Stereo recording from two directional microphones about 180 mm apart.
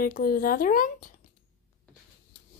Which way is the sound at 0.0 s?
55° left (ahead or behind).